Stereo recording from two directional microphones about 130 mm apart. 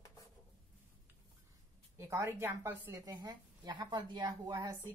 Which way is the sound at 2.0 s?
20° right (ahead or behind).